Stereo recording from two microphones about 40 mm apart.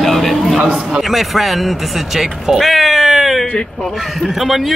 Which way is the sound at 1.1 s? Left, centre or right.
Centre.